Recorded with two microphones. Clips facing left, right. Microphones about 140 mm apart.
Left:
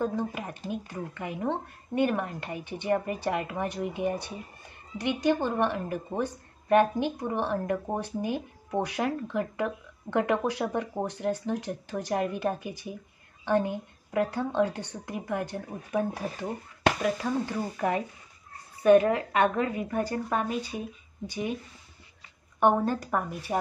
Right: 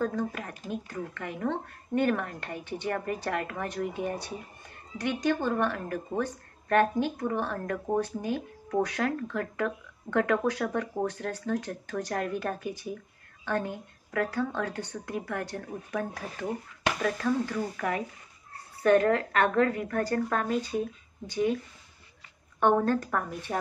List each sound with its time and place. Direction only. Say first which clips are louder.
0.0 s a woman's voice: even; 20° left (ahead or behind)
18.8 s speech: left 2 dB; 15° left (ahead or behind)
22.6 s speech: even; 10° left (ahead or behind)